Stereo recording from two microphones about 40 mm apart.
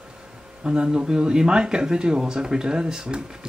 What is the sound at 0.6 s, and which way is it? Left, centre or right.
Speech, centre.